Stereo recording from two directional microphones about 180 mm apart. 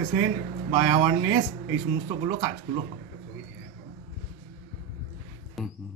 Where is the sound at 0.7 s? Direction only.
35° right (ahead or behind).